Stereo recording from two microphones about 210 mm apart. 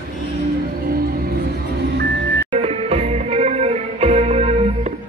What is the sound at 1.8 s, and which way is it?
Music, 50° right (ahead or behind).